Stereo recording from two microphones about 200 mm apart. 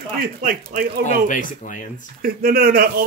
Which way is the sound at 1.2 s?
40° left (ahead or behind).